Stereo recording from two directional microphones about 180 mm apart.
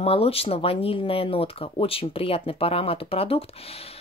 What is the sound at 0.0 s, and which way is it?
Speech, 35° left (ahead or behind).